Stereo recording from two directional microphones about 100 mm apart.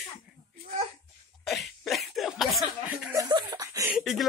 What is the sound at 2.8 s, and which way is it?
Chuckle, 10° right (ahead or behind).